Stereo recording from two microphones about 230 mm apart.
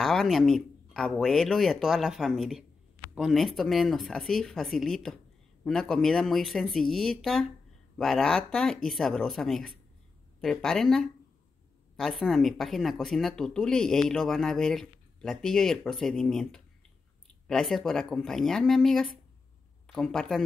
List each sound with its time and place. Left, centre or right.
0.0 s speech: centre